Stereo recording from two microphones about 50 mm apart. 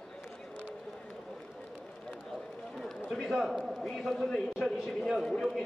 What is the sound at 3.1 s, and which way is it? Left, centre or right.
A man's voice, centre.